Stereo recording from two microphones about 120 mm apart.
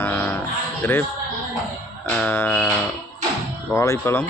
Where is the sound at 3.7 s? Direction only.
20° left (ahead or behind).